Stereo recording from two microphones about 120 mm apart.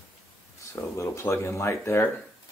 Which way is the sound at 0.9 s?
25° left (ahead or behind).